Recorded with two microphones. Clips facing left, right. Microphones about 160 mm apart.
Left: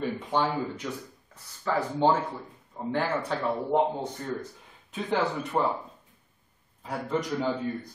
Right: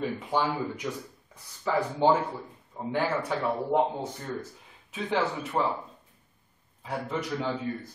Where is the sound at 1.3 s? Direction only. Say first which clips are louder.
Right 1 dB; 10° right (ahead or behind).